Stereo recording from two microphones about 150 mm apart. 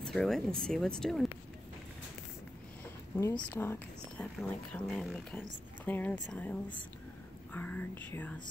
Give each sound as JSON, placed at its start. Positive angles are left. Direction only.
{"t": 0.0, "sound": "speech", "side_deg": 0}
{"t": 3.3, "sound": "speech", "side_deg": 15}
{"t": 4.4, "sound": "speech", "side_deg": 0}